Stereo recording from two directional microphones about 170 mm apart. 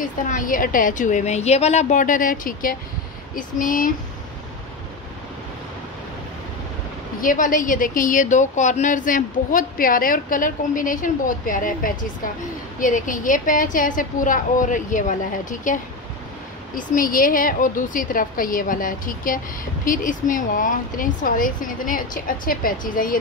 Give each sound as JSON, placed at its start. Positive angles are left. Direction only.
{"t": 0.0, "sound": "a woman's voice", "side_deg": 50}
{"t": 7.2, "sound": "a woman's voice", "side_deg": 50}